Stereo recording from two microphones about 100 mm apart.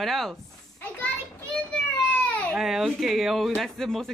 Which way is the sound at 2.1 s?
15° left (ahead or behind).